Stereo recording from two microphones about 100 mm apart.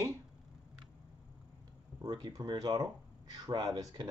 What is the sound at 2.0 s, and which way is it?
Speech, 45° right (ahead or behind).